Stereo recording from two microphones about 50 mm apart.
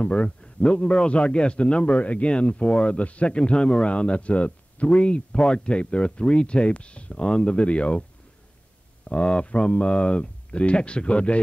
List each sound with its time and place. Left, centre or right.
0.0 s a man's voice: left
9.1 s a man's voice: left